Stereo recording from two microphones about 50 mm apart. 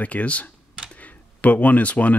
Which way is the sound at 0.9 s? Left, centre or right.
Left.